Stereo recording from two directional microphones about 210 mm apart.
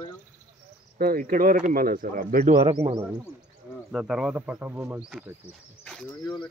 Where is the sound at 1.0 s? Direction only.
40° right (ahead or behind).